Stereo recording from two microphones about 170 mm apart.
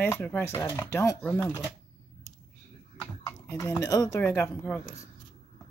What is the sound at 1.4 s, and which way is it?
Speech, 5° right (ahead or behind).